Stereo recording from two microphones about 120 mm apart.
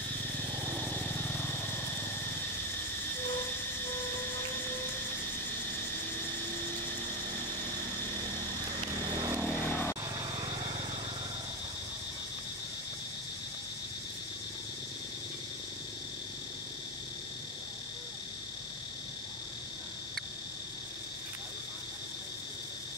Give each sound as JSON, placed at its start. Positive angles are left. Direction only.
{"t": 1.3, "sound": "vehicle", "side_deg": 15}
{"t": 9.1, "sound": "vehicle", "side_deg": -30}
{"t": 9.7, "sound": "vehicle", "side_deg": 15}
{"t": 10.4, "sound": "vehicle", "side_deg": -50}